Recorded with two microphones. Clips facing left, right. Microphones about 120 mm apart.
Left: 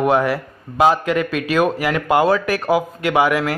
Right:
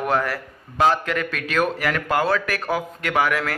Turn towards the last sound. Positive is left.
turn(degrees=15)  # may be behind; listen again after turning